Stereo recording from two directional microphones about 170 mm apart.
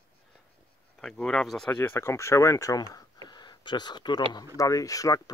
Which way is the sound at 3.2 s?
25° left (ahead or behind).